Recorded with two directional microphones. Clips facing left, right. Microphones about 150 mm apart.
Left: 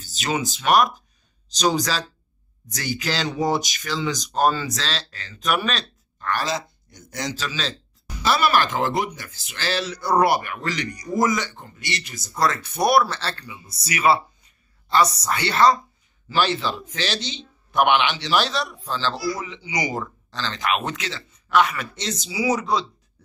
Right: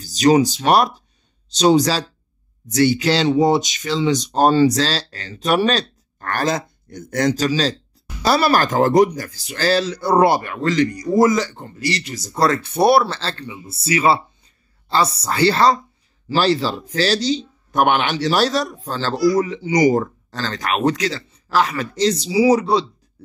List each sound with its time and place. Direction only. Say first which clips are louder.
0.0 s speech: right 12 dB; 35° right (ahead or behind)
6.1 s speech: right 4 dB; 50° right (ahead or behind); by 22.8 s 35° right (ahead or behind)